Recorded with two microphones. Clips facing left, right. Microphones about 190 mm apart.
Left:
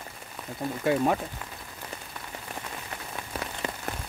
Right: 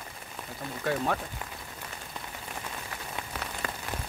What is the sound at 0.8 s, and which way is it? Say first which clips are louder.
Speech: left 5 dB; 15° left (ahead or behind).